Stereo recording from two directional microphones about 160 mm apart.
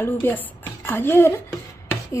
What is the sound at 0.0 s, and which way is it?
A woman's voice, 10° left (ahead or behind).